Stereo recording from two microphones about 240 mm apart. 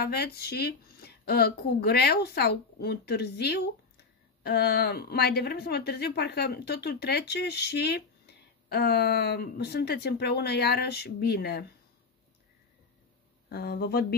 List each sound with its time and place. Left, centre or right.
0.0 s a woman's voice: left
13.5 s a woman's voice: left